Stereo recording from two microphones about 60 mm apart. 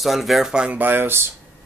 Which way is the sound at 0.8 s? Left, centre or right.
Right.